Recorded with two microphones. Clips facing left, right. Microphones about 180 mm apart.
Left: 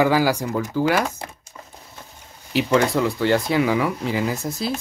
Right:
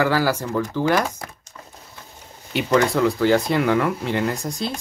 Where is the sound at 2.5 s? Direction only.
Centre (ahead or behind).